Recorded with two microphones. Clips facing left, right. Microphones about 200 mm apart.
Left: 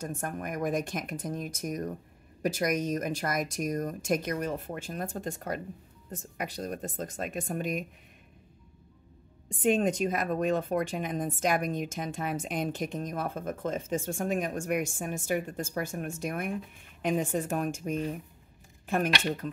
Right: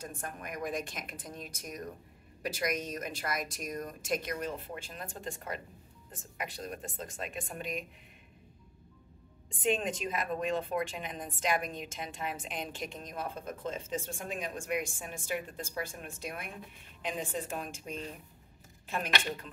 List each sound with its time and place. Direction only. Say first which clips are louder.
0.0 s a woman's voice: left 7 dB; 45° left (ahead or behind)
9.6 s a woman's voice: left 6 dB; 45° left (ahead or behind)